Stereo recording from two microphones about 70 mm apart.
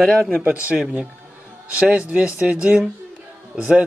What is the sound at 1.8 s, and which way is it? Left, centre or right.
Speech, centre.